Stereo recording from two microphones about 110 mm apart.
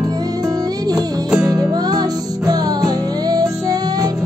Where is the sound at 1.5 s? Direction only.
35° right (ahead or behind).